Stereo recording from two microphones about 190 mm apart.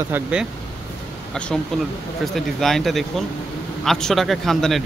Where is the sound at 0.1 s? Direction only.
5° right (ahead or behind).